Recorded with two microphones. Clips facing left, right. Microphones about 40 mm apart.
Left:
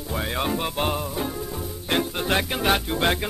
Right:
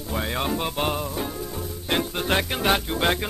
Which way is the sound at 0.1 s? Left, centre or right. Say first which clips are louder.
Even; centre.